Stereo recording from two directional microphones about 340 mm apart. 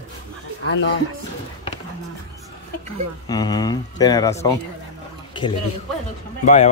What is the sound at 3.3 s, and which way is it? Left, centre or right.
A man's voice, centre.